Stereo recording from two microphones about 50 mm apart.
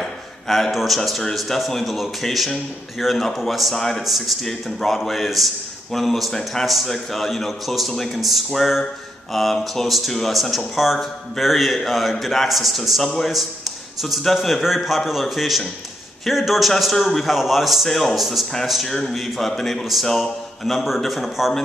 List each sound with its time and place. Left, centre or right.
0.0 s a man's voice: centre